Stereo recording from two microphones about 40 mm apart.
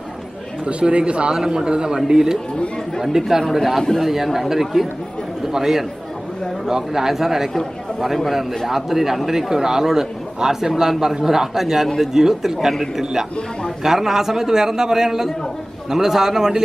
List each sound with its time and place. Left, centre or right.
0.7 s speech: right
1.3 s a man's voice: centre